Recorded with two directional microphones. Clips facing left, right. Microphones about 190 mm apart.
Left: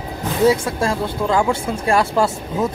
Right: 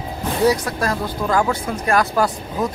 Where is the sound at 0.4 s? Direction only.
25° left (ahead or behind).